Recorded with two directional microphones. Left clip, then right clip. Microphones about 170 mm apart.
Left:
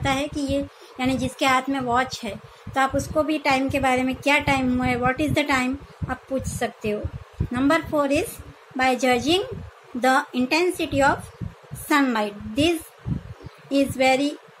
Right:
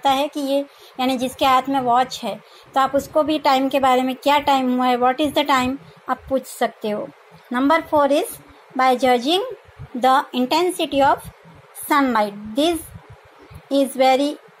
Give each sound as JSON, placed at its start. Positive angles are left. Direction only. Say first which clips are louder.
{"t": 0.0, "sound": "a woman's voice", "louder": "right 6 dB", "side_deg": -20}
{"t": 7.5, "sound": "a woman's voice", "louder": "right 4 dB", "side_deg": -20}